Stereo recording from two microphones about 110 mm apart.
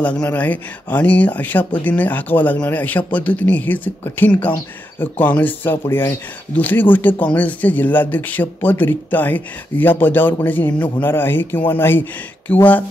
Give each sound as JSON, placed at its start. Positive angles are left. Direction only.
{"t": 0.0, "sound": "speech", "side_deg": 10}